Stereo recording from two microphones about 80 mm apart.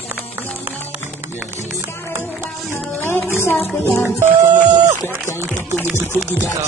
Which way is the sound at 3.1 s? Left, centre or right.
Left.